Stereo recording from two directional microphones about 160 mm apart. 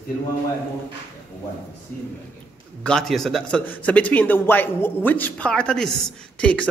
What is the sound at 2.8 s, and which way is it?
A man's voice, 5° left (ahead or behind).